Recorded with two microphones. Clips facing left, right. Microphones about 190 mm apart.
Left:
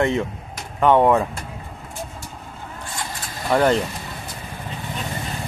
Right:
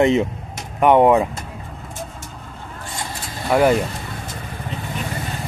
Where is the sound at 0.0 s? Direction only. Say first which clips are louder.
Right 5 dB; 20° right (ahead or behind).